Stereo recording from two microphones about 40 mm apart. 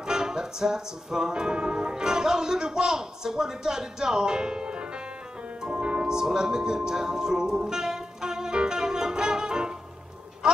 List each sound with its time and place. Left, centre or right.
0.0 s music: centre